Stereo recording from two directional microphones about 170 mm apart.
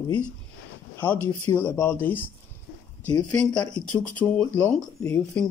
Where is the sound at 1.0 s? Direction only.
15° left (ahead or behind).